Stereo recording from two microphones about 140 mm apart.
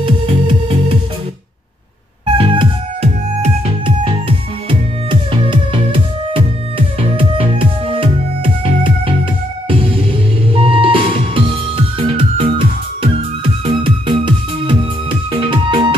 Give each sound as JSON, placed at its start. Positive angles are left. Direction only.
{"t": 0.0, "sound": "music", "side_deg": -35}
{"t": 2.3, "sound": "music", "side_deg": -35}
{"t": 9.7, "sound": "music", "side_deg": -40}